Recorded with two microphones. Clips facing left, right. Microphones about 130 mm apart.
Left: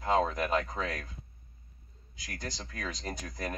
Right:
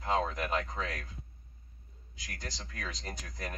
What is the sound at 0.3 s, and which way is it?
Speech, 30° left (ahead or behind).